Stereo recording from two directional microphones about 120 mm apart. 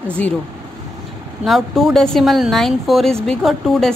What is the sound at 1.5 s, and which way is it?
Speech, centre (ahead or behind).